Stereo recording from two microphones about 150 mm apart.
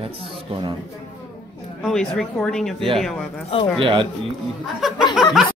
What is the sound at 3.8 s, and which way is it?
Speech, 35° right (ahead or behind).